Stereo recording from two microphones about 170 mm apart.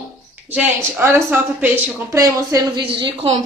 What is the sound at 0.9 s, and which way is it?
Speech, 15° right (ahead or behind).